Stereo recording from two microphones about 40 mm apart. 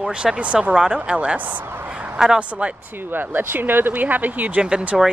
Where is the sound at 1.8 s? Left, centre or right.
Right.